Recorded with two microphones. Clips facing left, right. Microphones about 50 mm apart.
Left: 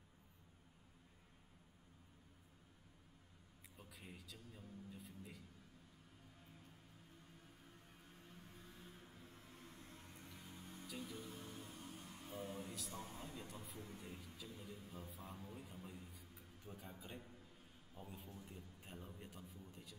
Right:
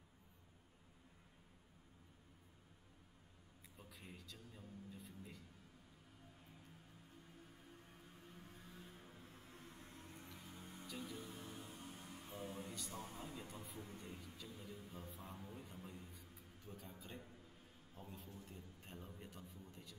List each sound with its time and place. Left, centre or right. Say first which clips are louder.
3.7 s a sound: even; centre
8.5 s vehicle: right 1 dB; centre
9.2 s a sound: right 1 dB; centre
10.0 s music: right 1 dB; centre
10.9 s music: right 1 dB; centre
11.1 s music: even; centre
12.1 s a sound: left 1 dB; centre
13.9 s music: right 1 dB; centre
15.5 s a man's voice: even; centre